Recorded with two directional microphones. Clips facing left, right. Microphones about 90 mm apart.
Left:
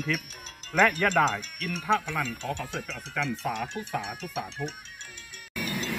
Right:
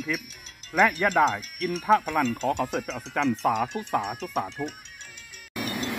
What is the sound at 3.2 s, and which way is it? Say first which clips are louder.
Speech: right 7 dB; 45° right (ahead or behind).